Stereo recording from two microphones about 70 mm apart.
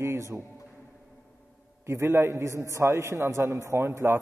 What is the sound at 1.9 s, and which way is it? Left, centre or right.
A man's voice, right.